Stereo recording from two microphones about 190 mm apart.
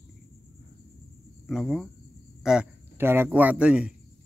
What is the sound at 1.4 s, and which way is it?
Speech, centre (ahead or behind).